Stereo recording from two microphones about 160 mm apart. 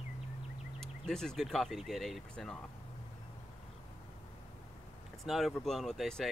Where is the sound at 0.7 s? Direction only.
5° left (ahead or behind).